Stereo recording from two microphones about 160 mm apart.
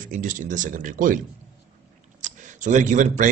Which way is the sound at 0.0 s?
55° right (ahead or behind).